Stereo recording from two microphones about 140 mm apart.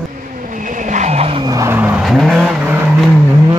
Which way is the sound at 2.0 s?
Centre (ahead or behind).